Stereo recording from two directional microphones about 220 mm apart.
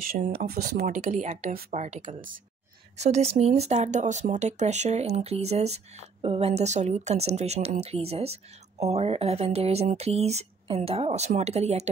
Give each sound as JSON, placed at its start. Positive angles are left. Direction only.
{"t": 0.0, "sound": "speech", "side_deg": -40}